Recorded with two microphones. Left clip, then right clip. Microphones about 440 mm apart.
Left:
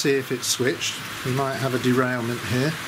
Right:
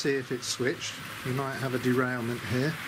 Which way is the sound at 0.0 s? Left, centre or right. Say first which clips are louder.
Left 7 dB; centre.